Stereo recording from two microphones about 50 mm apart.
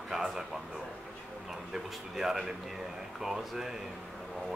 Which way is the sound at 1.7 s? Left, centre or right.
Centre.